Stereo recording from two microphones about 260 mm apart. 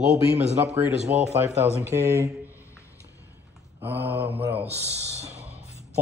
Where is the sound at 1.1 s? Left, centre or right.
Right.